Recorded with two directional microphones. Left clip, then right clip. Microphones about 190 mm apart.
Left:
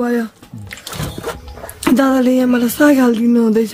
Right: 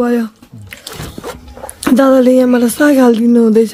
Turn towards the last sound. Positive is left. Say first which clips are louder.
# right 5 dB
turn(degrees=-20)  # may be behind; listen again after turning